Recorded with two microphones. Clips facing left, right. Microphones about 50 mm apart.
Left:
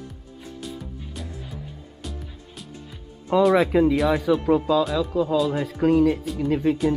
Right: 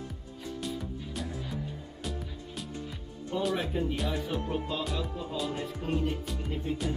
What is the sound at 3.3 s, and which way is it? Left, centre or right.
Speech, left.